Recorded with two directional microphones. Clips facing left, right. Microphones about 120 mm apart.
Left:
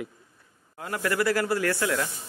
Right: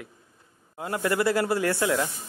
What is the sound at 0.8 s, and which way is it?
Speech, 20° right (ahead or behind).